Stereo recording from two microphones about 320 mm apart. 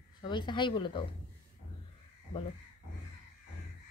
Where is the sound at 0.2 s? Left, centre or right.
Centre.